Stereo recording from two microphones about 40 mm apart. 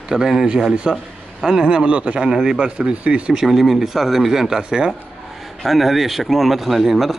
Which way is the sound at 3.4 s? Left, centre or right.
Centre.